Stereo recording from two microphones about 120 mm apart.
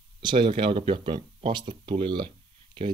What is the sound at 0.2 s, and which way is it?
Speech, 40° right (ahead or behind).